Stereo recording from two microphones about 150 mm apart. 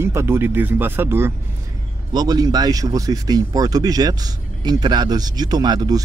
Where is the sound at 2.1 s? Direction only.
25° right (ahead or behind).